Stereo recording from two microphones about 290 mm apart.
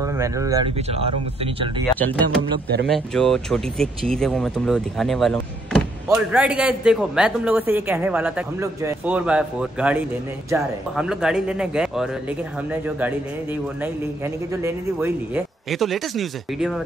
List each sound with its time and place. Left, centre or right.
0.0 s speech: centre
2.0 s a man's voice: centre